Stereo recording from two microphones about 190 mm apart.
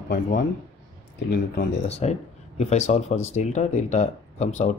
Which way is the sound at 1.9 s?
35° left (ahead or behind).